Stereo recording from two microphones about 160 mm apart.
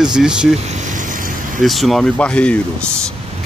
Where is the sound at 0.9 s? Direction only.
55° right (ahead or behind).